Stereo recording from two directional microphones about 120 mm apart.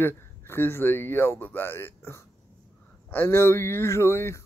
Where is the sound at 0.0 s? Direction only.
20° left (ahead or behind).